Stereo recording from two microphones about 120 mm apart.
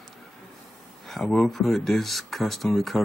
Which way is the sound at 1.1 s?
5° left (ahead or behind).